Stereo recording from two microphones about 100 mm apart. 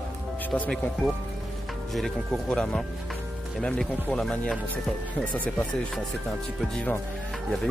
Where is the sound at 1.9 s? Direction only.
Centre (ahead or behind).